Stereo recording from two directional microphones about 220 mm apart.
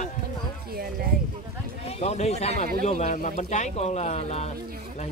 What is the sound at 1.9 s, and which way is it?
Speech, 30° left (ahead or behind).